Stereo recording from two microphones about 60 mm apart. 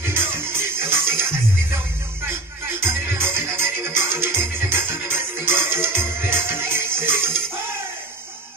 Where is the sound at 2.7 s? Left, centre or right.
Right.